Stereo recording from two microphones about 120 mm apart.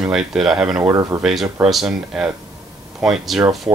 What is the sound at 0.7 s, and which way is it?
Speech, 35° right (ahead or behind).